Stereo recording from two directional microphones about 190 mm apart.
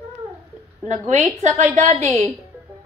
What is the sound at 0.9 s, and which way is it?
A woman's voice, 40° right (ahead or behind).